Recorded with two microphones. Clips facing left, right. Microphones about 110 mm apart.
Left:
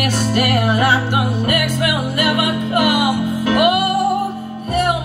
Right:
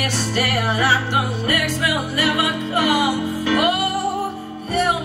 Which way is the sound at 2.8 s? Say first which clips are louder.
Left 1 dB; 20° left (ahead or behind).